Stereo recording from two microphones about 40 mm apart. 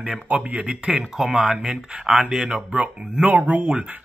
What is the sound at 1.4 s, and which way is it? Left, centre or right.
Speech, centre.